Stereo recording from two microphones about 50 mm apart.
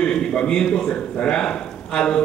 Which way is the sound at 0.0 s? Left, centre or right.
Centre.